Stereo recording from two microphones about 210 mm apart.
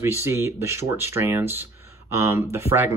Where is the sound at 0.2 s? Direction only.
10° right (ahead or behind).